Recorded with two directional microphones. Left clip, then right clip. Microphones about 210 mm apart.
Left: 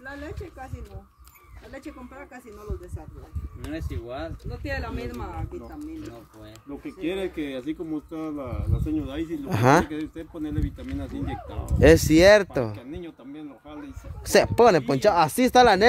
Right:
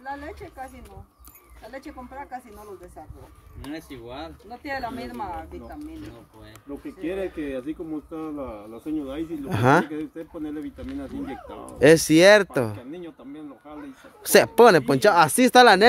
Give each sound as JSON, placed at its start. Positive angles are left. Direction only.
{"t": 3.7, "sound": "speech", "side_deg": -40}
{"t": 4.6, "sound": "speech", "side_deg": -15}
{"t": 7.1, "sound": "speech", "side_deg": 30}
{"t": 9.5, "sound": "speech", "side_deg": -5}
{"t": 9.9, "sound": "speech", "side_deg": 30}
{"t": 11.8, "sound": "speech", "side_deg": -5}
{"t": 12.7, "sound": "speech", "side_deg": 20}
{"t": 14.2, "sound": "speech", "side_deg": -15}